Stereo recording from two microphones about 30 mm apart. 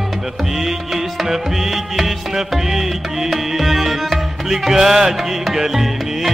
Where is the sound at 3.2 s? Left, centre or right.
Centre.